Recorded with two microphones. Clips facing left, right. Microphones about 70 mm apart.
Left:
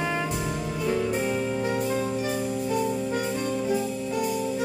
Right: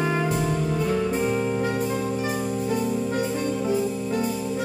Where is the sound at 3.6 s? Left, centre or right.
Right.